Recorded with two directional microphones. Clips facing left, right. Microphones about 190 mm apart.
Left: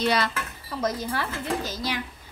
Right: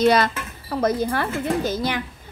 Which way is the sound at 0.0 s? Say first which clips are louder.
Right 7 dB; 45° right (ahead or behind).